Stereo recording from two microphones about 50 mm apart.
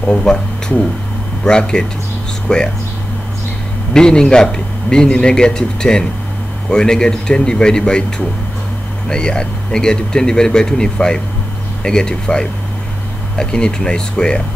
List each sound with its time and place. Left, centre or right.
0.0 s a man's voice: centre
3.9 s a man's voice: centre
9.1 s a man's voice: centre